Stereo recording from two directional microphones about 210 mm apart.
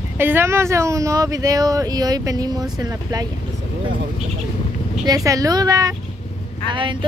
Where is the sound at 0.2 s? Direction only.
10° right (ahead or behind).